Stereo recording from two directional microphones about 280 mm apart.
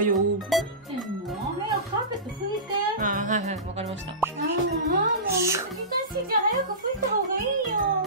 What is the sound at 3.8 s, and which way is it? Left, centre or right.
Music, centre.